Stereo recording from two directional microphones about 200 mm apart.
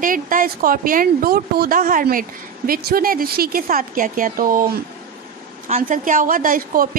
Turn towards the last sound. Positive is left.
turn(degrees=-45)  # may be behind; listen again after turning